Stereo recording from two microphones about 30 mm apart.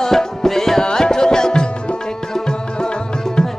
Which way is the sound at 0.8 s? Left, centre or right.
Left.